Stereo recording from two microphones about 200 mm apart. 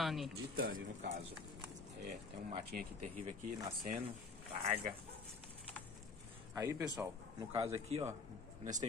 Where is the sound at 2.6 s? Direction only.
50° right (ahead or behind).